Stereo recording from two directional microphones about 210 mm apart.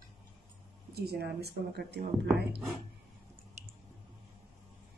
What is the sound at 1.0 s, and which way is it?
Speech, 50° right (ahead or behind).